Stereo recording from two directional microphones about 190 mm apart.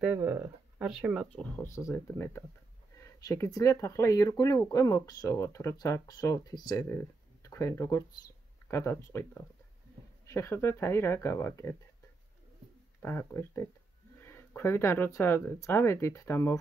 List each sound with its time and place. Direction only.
0.0 s speech: 5° right (ahead or behind); by 11.7 s 15° left (ahead or behind)
13.0 s speech: 10° left (ahead or behind)